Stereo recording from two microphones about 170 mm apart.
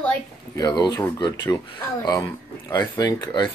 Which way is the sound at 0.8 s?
20° left (ahead or behind).